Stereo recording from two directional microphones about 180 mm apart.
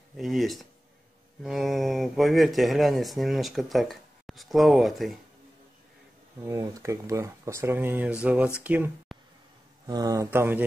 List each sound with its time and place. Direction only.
0.2 s speech: centre (ahead or behind)
6.4 s speech: 15° right (ahead or behind)
9.8 s speech: 20° right (ahead or behind)